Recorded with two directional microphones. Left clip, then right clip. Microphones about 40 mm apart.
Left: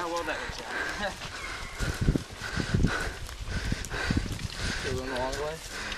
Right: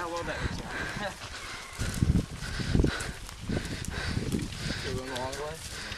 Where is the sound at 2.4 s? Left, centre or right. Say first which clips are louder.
Right 1 dB; left.